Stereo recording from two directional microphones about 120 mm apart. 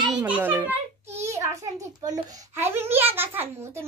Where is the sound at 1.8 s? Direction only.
30° right (ahead or behind).